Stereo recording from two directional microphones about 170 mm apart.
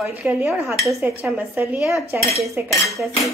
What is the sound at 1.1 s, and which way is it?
Speech, 15° right (ahead or behind).